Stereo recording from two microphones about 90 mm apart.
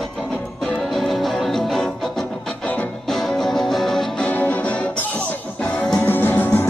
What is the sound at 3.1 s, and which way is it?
Music, 5° left (ahead or behind).